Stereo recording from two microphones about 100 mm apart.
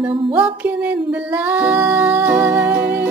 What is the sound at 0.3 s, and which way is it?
Music, 15° right (ahead or behind).